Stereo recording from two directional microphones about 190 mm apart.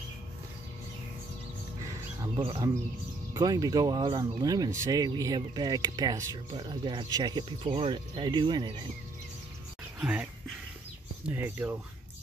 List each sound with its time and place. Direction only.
2.3 s speech: 25° right (ahead or behind)
9.9 s a sound: 5° right (ahead or behind)
11.2 s speech: 10° right (ahead or behind)